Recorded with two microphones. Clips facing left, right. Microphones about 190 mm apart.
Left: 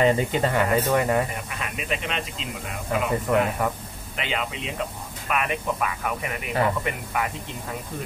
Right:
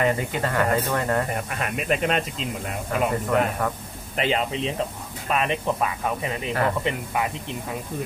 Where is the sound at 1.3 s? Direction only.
50° right (ahead or behind).